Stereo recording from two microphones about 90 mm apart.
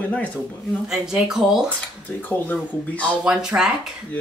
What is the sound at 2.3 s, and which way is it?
Speech, 20° left (ahead or behind).